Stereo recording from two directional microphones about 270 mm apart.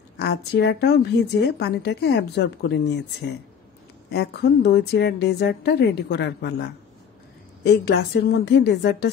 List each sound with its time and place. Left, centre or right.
0.2 s a woman's voice: left